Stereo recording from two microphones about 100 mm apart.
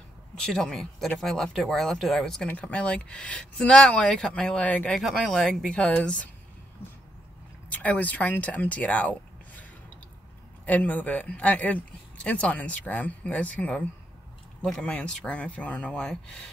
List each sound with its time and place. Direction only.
0.5 s speech: 5° left (ahead or behind)
2.4 s speech: 15° left (ahead or behind)
5.0 s speech: 5° left (ahead or behind)
7.7 s speech: 15° left (ahead or behind)